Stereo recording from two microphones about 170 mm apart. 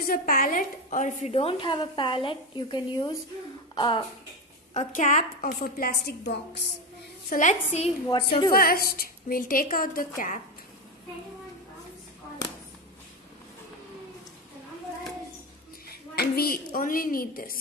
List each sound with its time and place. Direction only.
0.0 s a woman's voice: 60° left (ahead or behind); by 4.0 s 30° left (ahead or behind)
4.7 s a woman's voice: 50° left (ahead or behind); by 6.6 s 85° left
7.2 s a woman's voice: 50° left (ahead or behind)
8.1 s a woman's voice: 25° left (ahead or behind)
8.5 s a woman's voice: 60° left (ahead or behind)
15.9 s a woman's voice: 65° left (ahead or behind)